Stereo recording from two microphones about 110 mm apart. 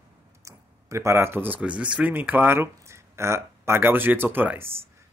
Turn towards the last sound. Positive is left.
turn(degrees=-20)  # may be behind; listen again after turning